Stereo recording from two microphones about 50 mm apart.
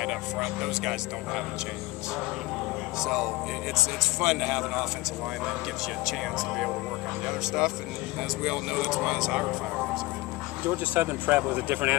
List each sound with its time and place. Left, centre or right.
0.0 s speech: centre
3.0 s speech: centre
6.0 s speech: centre
10.7 s speech: right